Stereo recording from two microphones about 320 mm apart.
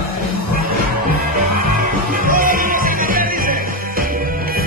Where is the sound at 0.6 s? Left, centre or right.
Right.